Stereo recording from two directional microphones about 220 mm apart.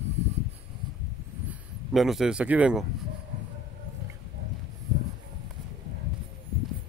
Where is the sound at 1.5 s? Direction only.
Centre (ahead or behind).